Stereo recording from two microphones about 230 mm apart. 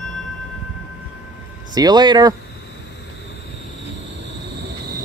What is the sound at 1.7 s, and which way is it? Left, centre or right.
Speech, centre.